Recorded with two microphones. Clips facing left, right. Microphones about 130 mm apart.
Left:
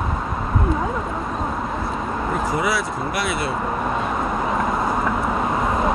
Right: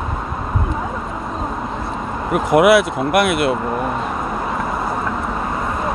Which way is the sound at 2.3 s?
65° right (ahead or behind).